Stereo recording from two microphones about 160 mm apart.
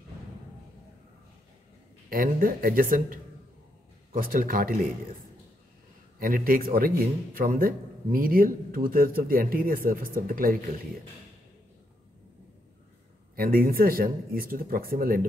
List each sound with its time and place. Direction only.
2.0 s a man's voice: 65° right (ahead or behind)
6.1 s a man's voice: 65° right (ahead or behind)
13.4 s a man's voice: 65° right (ahead or behind)